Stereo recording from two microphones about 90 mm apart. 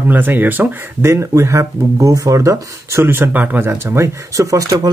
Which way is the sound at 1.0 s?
30° right (ahead or behind).